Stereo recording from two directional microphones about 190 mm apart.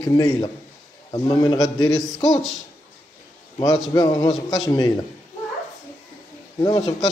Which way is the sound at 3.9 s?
20° left (ahead or behind).